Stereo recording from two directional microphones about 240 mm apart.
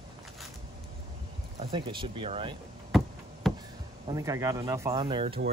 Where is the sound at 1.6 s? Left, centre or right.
Right.